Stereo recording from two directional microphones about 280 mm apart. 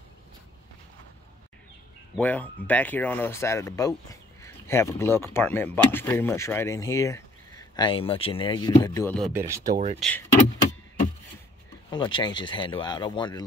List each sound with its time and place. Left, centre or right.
2.1 s speech: centre
11.9 s speech: centre